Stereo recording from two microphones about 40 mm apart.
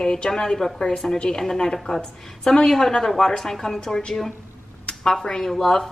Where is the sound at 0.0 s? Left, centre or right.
Centre.